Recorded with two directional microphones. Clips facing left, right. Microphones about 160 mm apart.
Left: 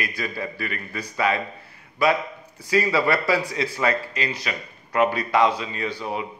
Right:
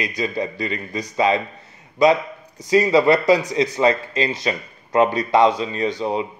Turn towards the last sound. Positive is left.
turn(degrees=-25)  # may be behind; listen again after turning